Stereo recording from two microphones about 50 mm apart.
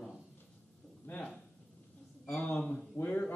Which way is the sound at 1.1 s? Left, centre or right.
Left.